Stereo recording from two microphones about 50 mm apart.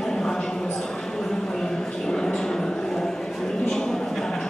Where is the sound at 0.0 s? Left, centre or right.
Centre.